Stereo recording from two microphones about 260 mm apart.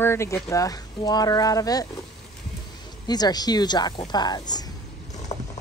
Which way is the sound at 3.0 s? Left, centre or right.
Centre.